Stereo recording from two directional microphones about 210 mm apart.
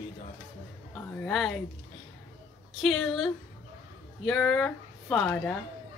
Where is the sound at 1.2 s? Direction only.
5° left (ahead or behind).